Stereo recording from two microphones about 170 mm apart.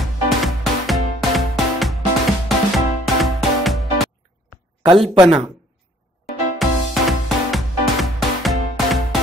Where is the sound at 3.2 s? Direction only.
Centre (ahead or behind).